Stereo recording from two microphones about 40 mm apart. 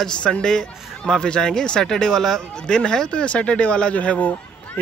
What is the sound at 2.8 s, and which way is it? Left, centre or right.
Speech, left.